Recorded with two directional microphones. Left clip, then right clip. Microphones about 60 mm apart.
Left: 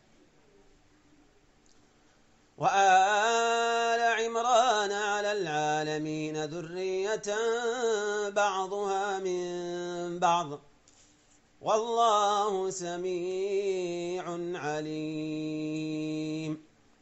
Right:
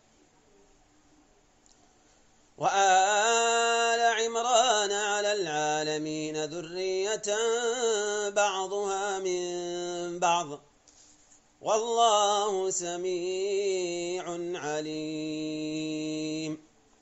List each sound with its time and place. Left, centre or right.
2.5 s mantra: left
11.6 s mantra: left